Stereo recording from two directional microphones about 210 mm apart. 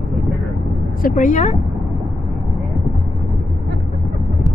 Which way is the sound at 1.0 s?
35° left (ahead or behind).